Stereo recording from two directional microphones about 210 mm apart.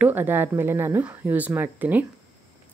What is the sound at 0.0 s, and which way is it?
A woman's voice, 10° right (ahead or behind).